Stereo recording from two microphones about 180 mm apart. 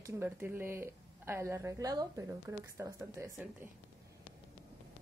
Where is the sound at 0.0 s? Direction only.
10° right (ahead or behind).